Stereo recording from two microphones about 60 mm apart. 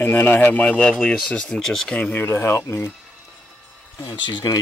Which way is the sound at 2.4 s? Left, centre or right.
Left.